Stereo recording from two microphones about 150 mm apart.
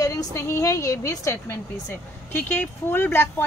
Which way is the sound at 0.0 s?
20° left (ahead or behind).